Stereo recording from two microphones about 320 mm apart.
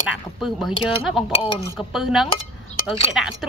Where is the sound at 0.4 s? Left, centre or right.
Centre.